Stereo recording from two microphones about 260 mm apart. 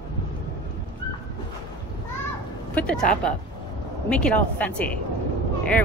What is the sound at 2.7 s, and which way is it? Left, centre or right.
Speech, centre.